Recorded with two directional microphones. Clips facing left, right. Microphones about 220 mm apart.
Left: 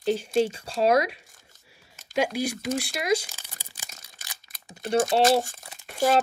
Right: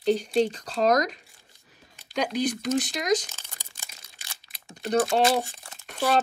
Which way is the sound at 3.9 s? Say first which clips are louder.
Left 2 dB; 45° left (ahead or behind).